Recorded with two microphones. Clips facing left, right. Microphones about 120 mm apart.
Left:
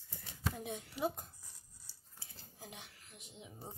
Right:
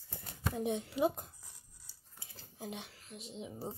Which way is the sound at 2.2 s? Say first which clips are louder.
Right 7 dB; 20° right (ahead or behind).